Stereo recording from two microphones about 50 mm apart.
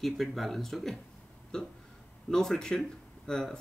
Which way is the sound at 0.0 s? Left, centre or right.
Centre.